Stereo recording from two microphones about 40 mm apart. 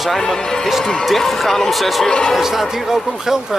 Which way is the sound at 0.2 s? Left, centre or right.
Centre.